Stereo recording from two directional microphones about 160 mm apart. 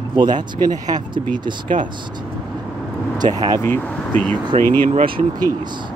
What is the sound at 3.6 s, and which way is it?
Speech, 10° left (ahead or behind).